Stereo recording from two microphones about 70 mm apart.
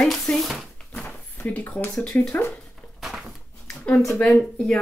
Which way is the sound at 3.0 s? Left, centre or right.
Centre.